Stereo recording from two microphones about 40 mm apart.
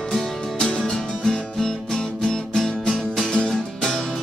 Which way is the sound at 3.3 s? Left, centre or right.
Left.